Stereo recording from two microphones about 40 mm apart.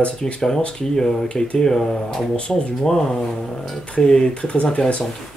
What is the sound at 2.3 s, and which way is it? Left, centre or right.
Speech, left.